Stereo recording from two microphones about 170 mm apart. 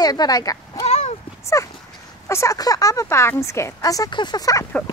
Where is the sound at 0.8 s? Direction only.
40° left (ahead or behind).